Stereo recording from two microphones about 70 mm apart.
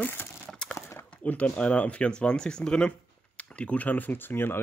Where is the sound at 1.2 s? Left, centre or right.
Left.